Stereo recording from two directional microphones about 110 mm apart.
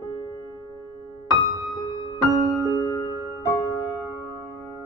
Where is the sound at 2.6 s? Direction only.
35° left (ahead or behind).